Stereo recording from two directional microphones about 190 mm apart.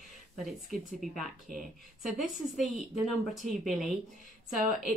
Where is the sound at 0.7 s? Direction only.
Centre (ahead or behind).